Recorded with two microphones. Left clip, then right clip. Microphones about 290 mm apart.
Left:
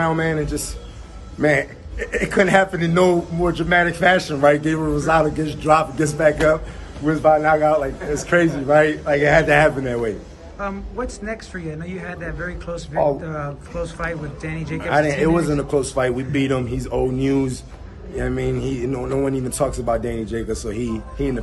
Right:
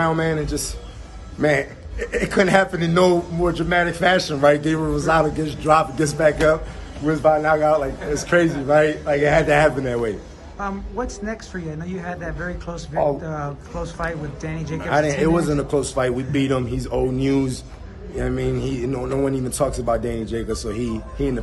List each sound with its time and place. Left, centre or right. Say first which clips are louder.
0.0 s a man's voice: even; centre